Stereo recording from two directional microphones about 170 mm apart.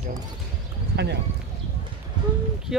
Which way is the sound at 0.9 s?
80° right.